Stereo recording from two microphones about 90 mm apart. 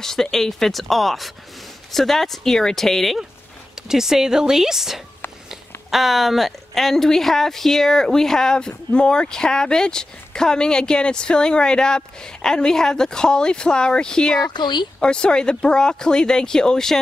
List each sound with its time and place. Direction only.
0.0 s a woman's voice: 5° left (ahead or behind)
14.5 s speech: 55° left (ahead or behind)
15.0 s a woman's voice: 10° left (ahead or behind)